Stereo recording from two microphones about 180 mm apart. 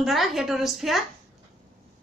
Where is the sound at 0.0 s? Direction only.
Centre (ahead or behind).